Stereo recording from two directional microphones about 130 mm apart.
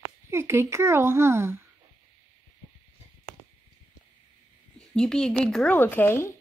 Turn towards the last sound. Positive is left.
turn(degrees=20)  # may be behind; listen again after turning